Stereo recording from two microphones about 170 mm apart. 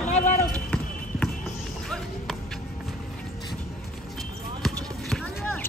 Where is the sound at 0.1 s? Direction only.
45° left (ahead or behind).